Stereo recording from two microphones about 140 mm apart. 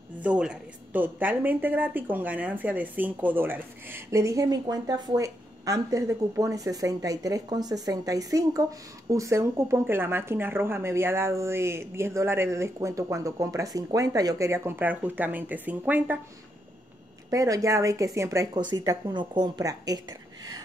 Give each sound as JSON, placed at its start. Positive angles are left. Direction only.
{"t": 0.2, "sound": "a woman's voice", "side_deg": -10}
{"t": 17.3, "sound": "a woman's voice", "side_deg": -25}